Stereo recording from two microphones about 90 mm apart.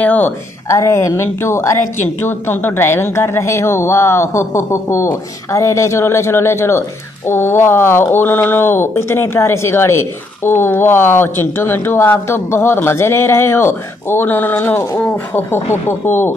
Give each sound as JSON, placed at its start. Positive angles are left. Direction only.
{"t": 0.0, "sound": "speech", "side_deg": 20}
{"t": 0.7, "sound": "a woman's voice", "side_deg": 35}